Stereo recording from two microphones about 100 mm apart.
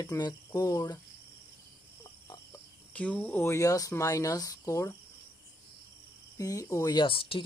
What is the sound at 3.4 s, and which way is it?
Speech, 30° left (ahead or behind).